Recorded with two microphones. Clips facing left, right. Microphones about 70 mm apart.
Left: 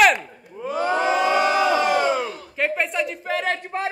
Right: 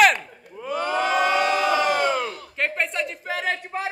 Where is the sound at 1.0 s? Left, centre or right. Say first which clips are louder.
Left 1 dB; right.